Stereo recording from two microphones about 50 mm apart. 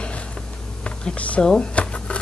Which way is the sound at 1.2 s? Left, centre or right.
Left.